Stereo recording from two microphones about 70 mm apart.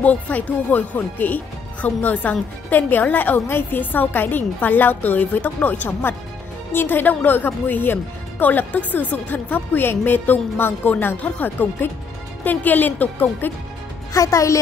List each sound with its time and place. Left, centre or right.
0.0 s speech: left
14.1 s a woman's voice: left